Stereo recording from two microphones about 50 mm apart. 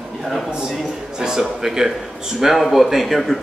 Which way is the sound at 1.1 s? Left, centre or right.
Centre.